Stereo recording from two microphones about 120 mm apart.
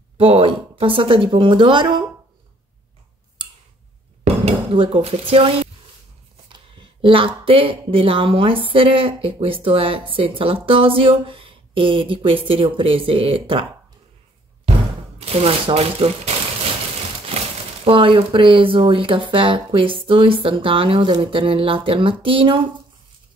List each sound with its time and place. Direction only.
0.2 s speech: 50° right (ahead or behind)
4.5 s dishes: 50° right (ahead or behind)
6.5 s speech: 45° right (ahead or behind)
15.1 s speech: 55° right (ahead or behind)
17.8 s speech: 50° right (ahead or behind)